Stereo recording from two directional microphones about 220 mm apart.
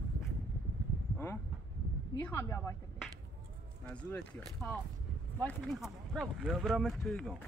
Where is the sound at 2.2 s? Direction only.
10° left (ahead or behind).